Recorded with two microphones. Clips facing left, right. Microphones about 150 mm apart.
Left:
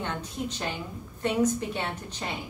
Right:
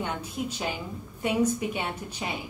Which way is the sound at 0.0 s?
10° right (ahead or behind).